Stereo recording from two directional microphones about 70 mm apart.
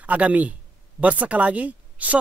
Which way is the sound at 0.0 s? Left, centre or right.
Right.